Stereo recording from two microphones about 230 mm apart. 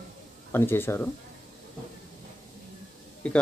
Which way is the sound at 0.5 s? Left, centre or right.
Centre.